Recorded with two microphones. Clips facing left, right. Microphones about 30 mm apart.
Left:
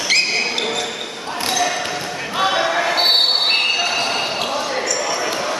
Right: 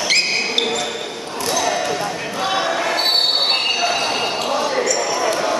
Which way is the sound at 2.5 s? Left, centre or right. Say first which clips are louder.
Left 1 dB; centre.